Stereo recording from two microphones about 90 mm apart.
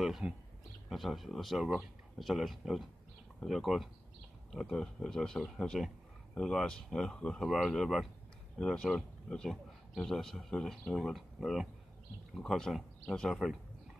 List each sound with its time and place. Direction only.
0.2 s speech: 15° right (ahead or behind)
0.8 s speech: centre (ahead or behind)